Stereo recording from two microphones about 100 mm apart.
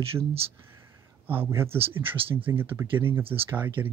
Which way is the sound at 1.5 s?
25° right (ahead or behind).